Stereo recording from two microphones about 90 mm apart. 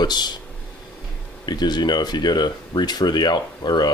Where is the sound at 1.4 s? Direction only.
50° left (ahead or behind).